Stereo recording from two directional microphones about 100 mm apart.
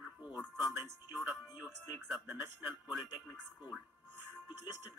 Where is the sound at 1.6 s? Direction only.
15° right (ahead or behind).